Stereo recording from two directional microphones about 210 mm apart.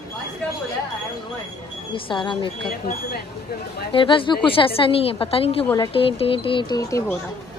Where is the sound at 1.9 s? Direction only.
25° left (ahead or behind).